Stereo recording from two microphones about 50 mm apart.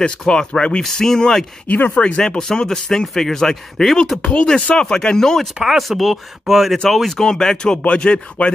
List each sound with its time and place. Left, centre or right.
0.2 s speech: centre
0.8 s speech: centre
1.7 s speech: left
2.2 s speech: centre
4.6 s speech: left
4.8 s speech: centre
5.6 s speech: centre; by 8.5 s left